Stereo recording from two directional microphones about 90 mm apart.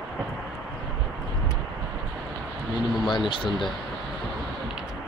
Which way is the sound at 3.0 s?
60° left (ahead or behind).